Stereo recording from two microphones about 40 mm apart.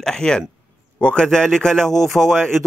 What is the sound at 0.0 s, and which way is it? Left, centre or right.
A man's voice, centre.